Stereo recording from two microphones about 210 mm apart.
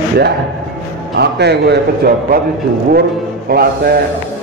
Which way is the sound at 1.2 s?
50° right (ahead or behind).